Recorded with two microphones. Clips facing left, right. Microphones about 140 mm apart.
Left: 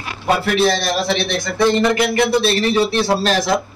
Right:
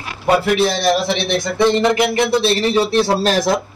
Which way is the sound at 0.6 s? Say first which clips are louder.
Right 1 dB; 15° right (ahead or behind).